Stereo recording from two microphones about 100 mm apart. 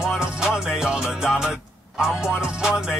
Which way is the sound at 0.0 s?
5° right (ahead or behind).